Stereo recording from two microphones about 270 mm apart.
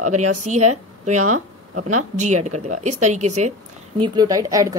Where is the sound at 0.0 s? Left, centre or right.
Right.